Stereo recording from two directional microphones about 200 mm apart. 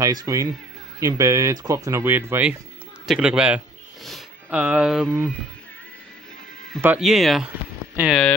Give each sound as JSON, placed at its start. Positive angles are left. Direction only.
{"t": 0.0, "sound": "speech", "side_deg": -20}
{"t": 6.8, "sound": "speech", "side_deg": -5}